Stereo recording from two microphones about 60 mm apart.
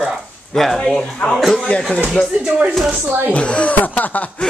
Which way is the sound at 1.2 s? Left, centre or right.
Left.